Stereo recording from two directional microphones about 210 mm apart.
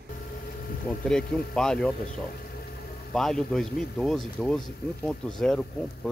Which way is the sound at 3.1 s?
Centre (ahead or behind).